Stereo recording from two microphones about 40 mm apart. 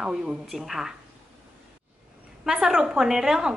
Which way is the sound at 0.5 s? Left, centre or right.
Centre.